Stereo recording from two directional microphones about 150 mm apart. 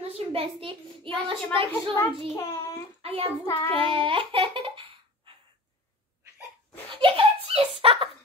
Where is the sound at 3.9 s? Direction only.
35° right (ahead or behind).